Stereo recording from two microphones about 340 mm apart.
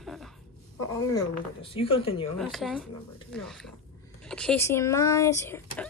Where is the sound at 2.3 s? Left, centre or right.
Centre.